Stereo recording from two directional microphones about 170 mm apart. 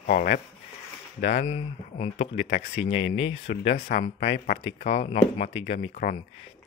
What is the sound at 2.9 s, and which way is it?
Speech, 90° left.